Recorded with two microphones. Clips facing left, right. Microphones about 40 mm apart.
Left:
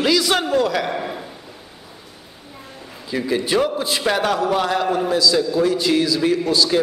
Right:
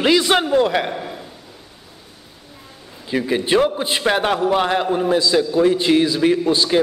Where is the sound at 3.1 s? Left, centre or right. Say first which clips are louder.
Right 2 dB; right.